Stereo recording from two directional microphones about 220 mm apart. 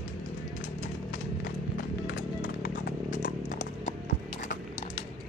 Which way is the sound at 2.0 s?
45° left (ahead or behind).